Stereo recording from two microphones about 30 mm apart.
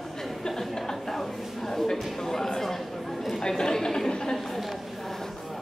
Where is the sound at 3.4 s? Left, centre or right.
Left.